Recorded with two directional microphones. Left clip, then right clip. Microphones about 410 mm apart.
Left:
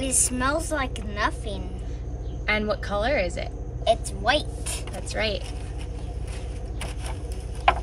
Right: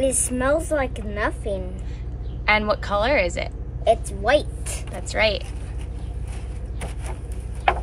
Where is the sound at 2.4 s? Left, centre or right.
Centre.